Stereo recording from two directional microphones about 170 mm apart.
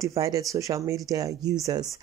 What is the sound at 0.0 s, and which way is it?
Speech, 20° right (ahead or behind).